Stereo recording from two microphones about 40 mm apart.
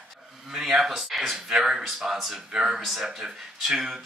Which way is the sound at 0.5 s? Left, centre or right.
Centre.